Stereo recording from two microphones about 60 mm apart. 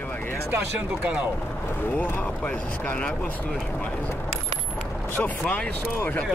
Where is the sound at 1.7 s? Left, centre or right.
Left.